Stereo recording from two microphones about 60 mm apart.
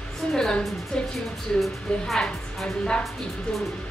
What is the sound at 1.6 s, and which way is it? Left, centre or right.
Speech, centre.